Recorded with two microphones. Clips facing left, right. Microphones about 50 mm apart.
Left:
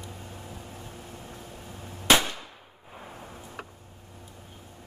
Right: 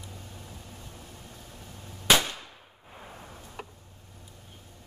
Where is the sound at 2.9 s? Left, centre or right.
Centre.